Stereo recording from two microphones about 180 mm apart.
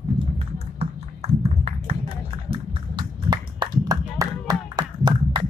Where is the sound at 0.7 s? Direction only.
35° right (ahead or behind).